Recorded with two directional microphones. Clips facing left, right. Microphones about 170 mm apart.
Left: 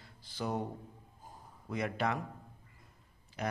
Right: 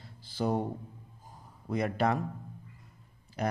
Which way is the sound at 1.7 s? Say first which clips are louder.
Right 5 dB; 35° right (ahead or behind).